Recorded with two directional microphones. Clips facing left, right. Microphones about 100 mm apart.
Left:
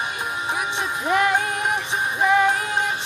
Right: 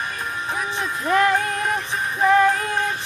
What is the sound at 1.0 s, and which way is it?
Music, 15° left (ahead or behind).